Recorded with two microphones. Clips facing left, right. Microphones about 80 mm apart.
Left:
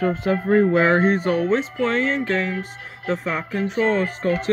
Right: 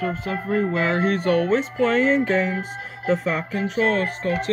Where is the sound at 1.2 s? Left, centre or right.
Centre.